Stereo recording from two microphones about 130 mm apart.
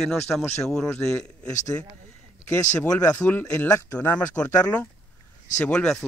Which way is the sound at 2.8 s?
10° left (ahead or behind).